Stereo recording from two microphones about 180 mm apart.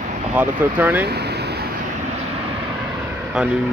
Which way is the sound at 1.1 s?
65° right (ahead or behind).